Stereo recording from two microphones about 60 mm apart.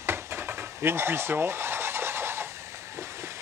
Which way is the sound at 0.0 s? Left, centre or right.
Right.